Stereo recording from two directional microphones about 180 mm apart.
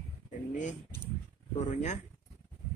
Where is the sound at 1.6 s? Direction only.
40° left (ahead or behind).